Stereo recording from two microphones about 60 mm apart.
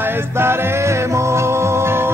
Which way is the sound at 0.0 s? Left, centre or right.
Right.